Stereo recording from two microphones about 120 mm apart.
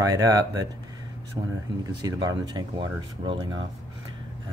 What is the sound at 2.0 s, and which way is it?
Speech, 35° right (ahead or behind).